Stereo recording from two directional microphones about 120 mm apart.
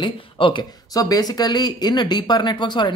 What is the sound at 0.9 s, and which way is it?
Speech, 30° left (ahead or behind).